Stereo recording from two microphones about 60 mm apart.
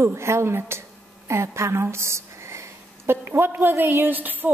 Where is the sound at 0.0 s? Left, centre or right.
Right.